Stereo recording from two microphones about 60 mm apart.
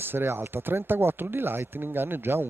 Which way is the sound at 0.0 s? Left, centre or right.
Right.